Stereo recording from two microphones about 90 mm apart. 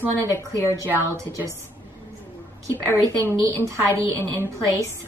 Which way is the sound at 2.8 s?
25° left (ahead or behind).